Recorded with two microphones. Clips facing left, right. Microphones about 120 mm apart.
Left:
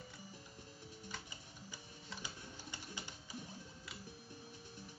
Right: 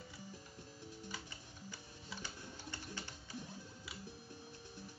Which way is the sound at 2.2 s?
15° left (ahead or behind).